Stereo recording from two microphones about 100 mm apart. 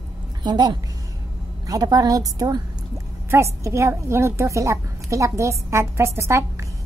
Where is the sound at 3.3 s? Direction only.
30° right (ahead or behind).